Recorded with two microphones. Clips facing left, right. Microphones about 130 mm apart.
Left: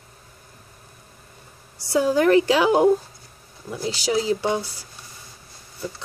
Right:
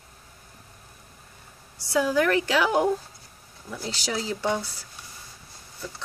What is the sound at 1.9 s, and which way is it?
A woman's voice, 30° left (ahead or behind).